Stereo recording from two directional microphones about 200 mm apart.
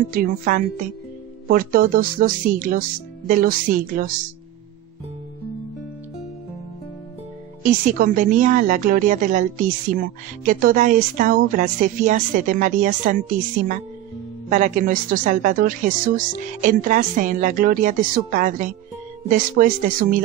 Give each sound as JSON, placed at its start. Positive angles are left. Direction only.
{"t": 0.1, "sound": "speech", "side_deg": -45}
{"t": 7.6, "sound": "speech", "side_deg": -40}